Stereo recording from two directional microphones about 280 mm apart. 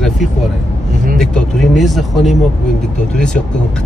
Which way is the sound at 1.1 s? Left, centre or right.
Centre.